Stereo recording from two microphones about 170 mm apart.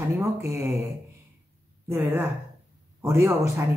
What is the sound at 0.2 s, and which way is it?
Speech, 15° right (ahead or behind).